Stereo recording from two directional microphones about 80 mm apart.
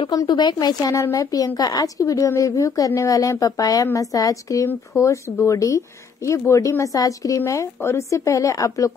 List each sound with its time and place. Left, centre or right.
0.1 s a woman's voice: left